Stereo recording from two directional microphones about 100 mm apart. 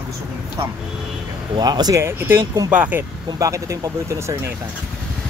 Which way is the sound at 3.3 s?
30° right (ahead or behind).